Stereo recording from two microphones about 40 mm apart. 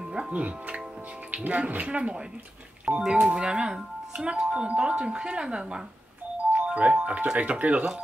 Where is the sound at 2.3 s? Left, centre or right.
Right.